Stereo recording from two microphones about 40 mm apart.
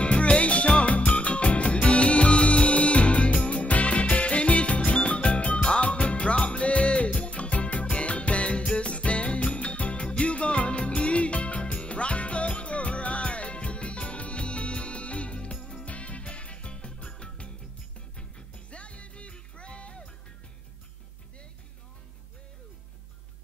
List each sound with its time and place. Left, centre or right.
0.0 s music: left